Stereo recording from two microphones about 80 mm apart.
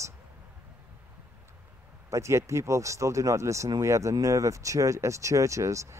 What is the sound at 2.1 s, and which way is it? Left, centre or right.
Speech, right.